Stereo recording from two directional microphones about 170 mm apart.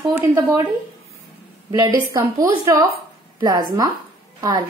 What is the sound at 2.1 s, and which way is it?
Speech, 20° right (ahead or behind).